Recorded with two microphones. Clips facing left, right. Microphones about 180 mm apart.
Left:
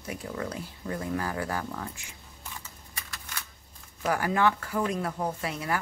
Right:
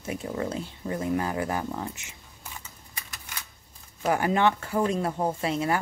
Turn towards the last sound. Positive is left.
turn(degrees=-25)  # may be behind; listen again after turning